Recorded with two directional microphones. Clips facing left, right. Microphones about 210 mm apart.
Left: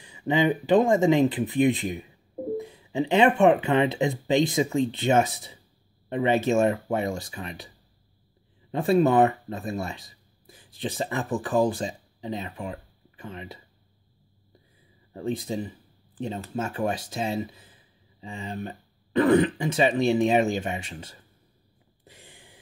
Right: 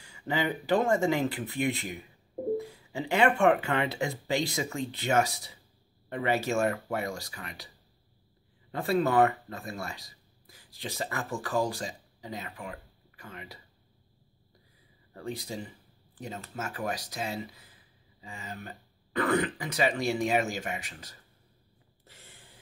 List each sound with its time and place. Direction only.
0.0 s speech: 20° left (ahead or behind)
8.7 s speech: 20° left (ahead or behind)
15.1 s speech: 20° left (ahead or behind)
22.0 s a sound: 15° left (ahead or behind)